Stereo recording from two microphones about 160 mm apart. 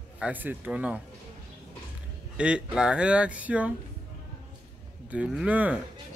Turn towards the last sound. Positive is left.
turn(degrees=-10)  # may be behind; listen again after turning